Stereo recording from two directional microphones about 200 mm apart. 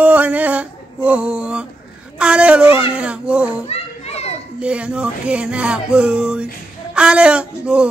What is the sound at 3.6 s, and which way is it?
Children playing, 30° left (ahead or behind).